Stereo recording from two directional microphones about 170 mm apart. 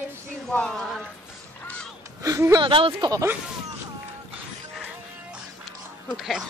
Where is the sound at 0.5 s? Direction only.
5° left (ahead or behind).